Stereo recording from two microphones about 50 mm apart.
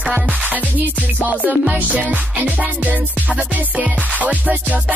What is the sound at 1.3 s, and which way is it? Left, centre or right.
Music, right.